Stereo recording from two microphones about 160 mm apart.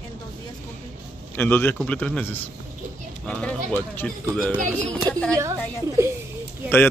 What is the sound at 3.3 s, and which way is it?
A man's voice, 5° left (ahead or behind).